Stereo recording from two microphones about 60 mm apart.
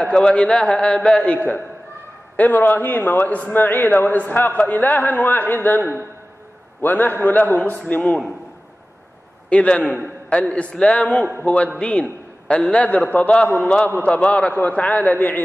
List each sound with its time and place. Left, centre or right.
0.0 s a man's voice: centre
9.5 s a man's voice: left